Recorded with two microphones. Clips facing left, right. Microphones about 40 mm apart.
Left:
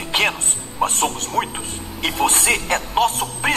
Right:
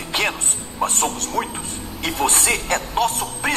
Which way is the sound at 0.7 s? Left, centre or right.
Left.